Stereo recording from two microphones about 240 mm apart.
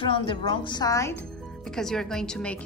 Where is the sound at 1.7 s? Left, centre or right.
Centre.